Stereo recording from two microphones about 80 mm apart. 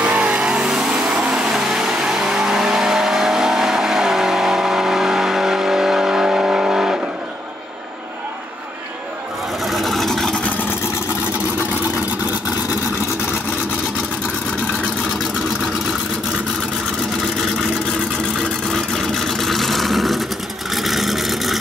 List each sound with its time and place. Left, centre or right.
0.0 s vehicle: centre
9.7 s vehicle: centre
10.3 s vehicle: centre
17.4 s vehicle: centre